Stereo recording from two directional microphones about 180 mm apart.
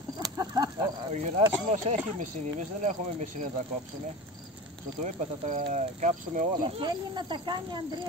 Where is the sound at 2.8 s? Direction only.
45° right (ahead or behind).